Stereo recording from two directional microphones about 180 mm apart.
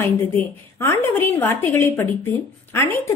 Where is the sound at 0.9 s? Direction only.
15° left (ahead or behind).